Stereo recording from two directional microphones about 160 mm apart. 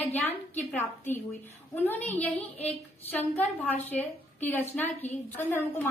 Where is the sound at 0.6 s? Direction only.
10° left (ahead or behind).